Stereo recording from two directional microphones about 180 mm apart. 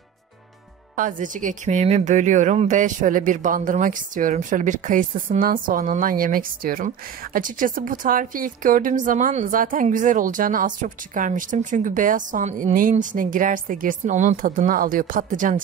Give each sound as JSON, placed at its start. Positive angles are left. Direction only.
{"t": 0.9, "sound": "a woman's voice", "side_deg": -45}